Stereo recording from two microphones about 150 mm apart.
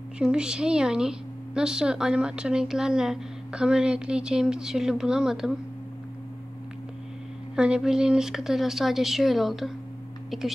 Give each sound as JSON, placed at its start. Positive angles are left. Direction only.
{"t": 0.2, "sound": "a woman's voice", "side_deg": -5}
{"t": 7.5, "sound": "a woman's voice", "side_deg": -5}